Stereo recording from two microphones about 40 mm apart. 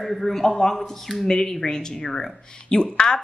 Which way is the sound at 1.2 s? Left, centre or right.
Centre.